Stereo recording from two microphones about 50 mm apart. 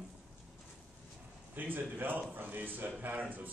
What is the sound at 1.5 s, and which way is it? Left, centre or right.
A man's voice, right.